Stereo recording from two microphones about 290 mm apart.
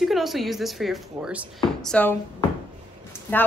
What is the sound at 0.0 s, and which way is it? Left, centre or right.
Speech, centre.